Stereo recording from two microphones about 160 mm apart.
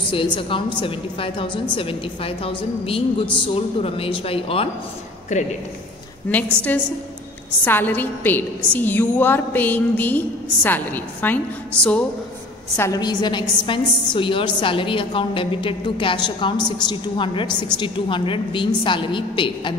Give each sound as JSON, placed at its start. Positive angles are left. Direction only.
{"t": 0.1, "sound": "a woman's voice", "side_deg": 35}
{"t": 5.3, "sound": "a man's voice", "side_deg": 50}
{"t": 6.3, "sound": "a woman's voice", "side_deg": 10}
{"t": 12.7, "sound": "a woman's voice", "side_deg": 20}